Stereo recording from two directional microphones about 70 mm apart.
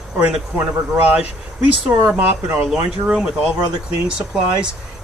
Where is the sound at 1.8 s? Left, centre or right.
Centre.